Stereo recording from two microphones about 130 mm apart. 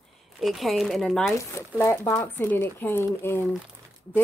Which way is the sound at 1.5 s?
20° left (ahead or behind).